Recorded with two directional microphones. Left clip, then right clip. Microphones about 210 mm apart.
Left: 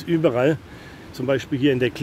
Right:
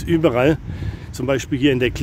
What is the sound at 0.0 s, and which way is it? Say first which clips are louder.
Speech: right 3 dB; 25° right (ahead or behind).